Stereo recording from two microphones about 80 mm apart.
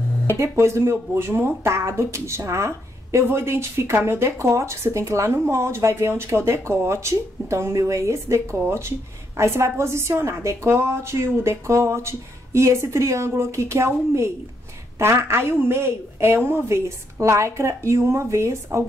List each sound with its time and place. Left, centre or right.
0.4 s speech: right